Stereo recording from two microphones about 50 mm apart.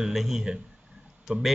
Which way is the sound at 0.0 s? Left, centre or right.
Centre.